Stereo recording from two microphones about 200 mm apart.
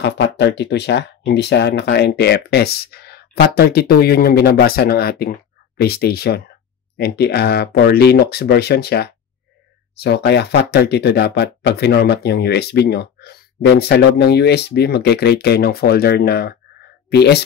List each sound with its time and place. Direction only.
0.0 s speech: 60° left (ahead or behind)